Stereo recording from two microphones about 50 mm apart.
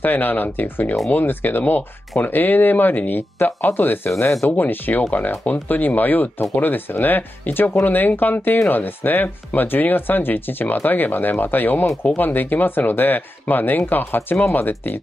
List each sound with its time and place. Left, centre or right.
0.0 s speech: left